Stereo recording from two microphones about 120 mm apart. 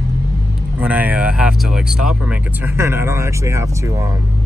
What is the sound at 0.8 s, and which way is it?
Speech, 15° right (ahead or behind).